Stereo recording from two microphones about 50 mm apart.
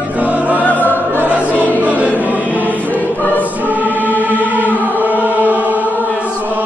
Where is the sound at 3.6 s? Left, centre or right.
Right.